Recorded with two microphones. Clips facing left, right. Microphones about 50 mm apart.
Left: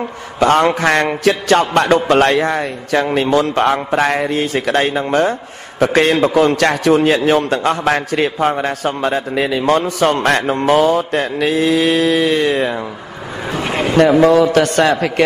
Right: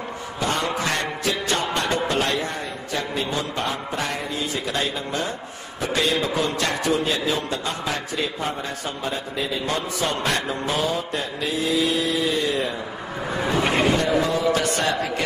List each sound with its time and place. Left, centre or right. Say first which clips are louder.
0.4 s a man's voice: left 12 dB; left
14.2 s a man's voice: left 11 dB; left